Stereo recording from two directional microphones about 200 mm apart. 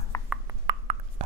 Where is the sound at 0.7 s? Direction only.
30° right (ahead or behind).